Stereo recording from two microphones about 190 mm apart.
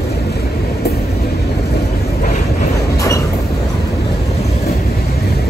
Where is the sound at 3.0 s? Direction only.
15° left (ahead or behind).